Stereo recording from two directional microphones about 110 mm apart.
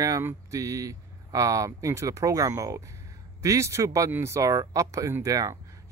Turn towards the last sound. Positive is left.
turn(degrees=-30)  # may be behind; listen again after turning